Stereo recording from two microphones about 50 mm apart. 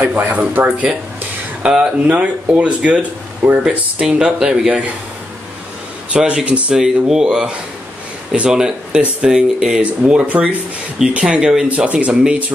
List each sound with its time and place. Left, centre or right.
0.0 s speech: right
1.6 s speech: centre
2.0 s speech: right
6.0 s speech: right
6.7 s speech: centre